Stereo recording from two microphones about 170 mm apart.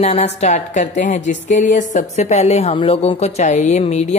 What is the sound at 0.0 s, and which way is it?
Speech, 40° left (ahead or behind).